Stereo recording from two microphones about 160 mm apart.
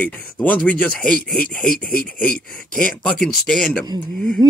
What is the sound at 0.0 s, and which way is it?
Speech, 10° left (ahead or behind).